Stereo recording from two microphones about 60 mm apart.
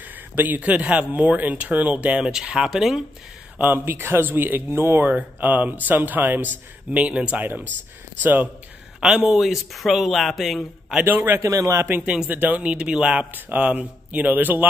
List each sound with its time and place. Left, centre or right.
0.0 s speech: right; by 3.0 s centre
3.5 s speech: right
5.1 s speech: right
9.0 s a man's voice: centre
11.3 s a man's voice: right
11.8 s speech: right